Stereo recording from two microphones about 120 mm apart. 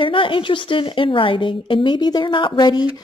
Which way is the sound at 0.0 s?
45° left (ahead or behind).